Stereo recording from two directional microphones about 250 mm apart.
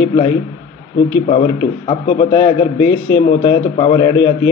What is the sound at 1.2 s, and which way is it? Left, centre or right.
A man's voice, left.